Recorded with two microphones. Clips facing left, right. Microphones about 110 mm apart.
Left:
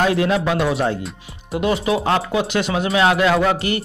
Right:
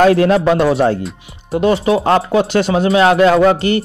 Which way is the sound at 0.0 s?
50° right (ahead or behind).